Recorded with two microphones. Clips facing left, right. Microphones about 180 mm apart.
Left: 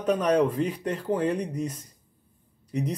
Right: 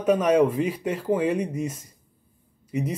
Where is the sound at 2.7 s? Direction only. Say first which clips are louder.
Right 2 dB; 5° right (ahead or behind).